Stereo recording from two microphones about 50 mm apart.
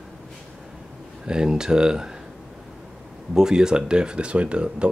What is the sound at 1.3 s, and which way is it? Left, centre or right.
Speech, centre.